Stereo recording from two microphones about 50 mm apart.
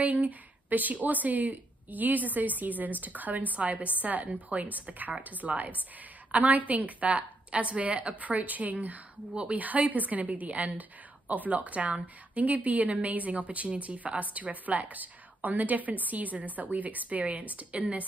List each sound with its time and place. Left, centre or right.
0.0 s a woman's voice: right
9.3 s a woman's voice: right
9.6 s a woman's voice: right